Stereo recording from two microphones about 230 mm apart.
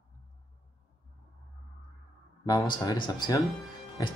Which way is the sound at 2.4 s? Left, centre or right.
Centre.